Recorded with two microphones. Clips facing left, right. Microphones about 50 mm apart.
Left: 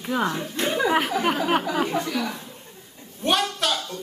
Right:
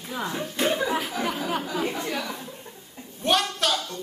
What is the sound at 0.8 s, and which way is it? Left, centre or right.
Speech, left.